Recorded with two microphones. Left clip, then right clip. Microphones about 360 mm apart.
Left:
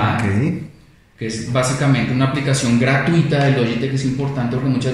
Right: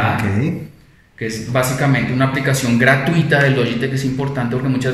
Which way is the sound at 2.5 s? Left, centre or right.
Right.